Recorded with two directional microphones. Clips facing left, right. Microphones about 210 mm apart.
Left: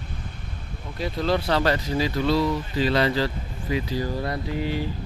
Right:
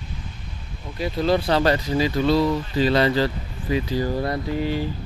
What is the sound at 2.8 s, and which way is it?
Speech, 30° right (ahead or behind).